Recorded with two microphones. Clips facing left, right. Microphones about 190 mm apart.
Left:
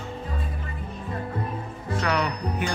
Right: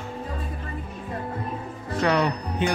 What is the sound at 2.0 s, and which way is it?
Music, 30° right (ahead or behind).